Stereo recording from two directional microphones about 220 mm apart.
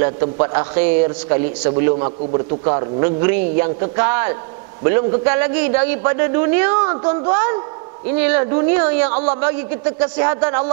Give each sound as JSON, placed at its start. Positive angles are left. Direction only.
{"t": 0.0, "sound": "a man's voice", "side_deg": -15}
{"t": 2.0, "sound": "a man's voice", "side_deg": -25}